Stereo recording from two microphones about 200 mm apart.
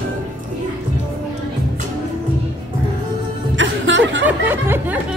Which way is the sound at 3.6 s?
70° right (ahead or behind).